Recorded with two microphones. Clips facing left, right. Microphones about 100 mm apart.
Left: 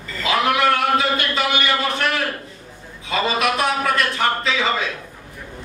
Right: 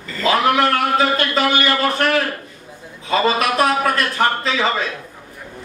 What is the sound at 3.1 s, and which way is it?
Speech, 35° right (ahead or behind).